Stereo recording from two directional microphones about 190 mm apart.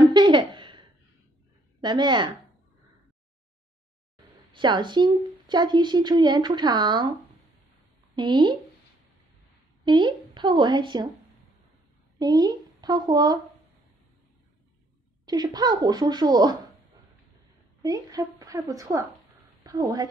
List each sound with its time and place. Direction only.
0.1 s a sound: 25° right (ahead or behind)
1.8 s a woman's voice: 25° right (ahead or behind)
4.5 s a woman's voice: 25° right (ahead or behind)
8.2 s a woman's voice: 25° right (ahead or behind)
9.8 s a woman's voice: 25° right (ahead or behind)
12.2 s a woman's voice: 20° right (ahead or behind)
15.2 s a woman's voice: 20° right (ahead or behind)
17.8 s a woman's voice: 20° right (ahead or behind)